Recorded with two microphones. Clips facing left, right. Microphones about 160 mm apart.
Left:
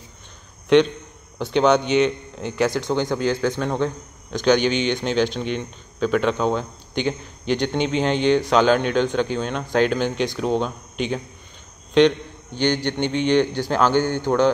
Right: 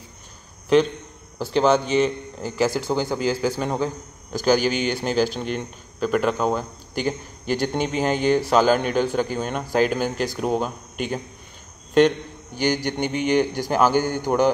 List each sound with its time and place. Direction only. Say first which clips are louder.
1.4 s a man's voice: left 1 dB; centre (ahead or behind)
12.5 s a man's voice: left 1 dB; 10° right (ahead or behind)